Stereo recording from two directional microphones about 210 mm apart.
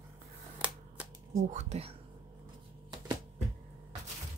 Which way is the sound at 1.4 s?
30° right (ahead or behind).